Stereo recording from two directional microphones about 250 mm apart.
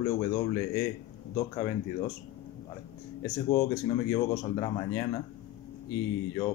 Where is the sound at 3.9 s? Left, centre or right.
Centre.